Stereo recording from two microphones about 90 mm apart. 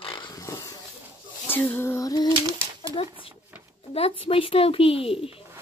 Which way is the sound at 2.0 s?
45° left (ahead or behind).